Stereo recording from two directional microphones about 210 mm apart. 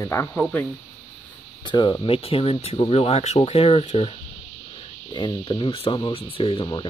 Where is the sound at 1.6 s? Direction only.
20° left (ahead or behind).